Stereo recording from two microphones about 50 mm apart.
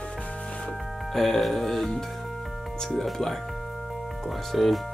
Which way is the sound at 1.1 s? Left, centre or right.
Centre.